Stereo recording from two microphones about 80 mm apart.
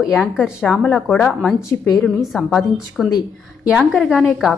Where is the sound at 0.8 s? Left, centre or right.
Centre.